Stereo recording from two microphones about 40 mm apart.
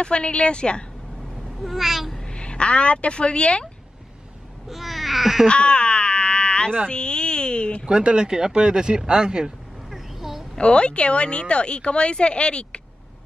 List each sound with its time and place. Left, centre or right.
0.0 s speech: left
1.6 s babbling: centre
2.1 s a woman's voice: left
4.6 s babbling: centre
5.5 s a sound: left
7.9 s speech: right
9.8 s a sound: centre
10.6 s speech: left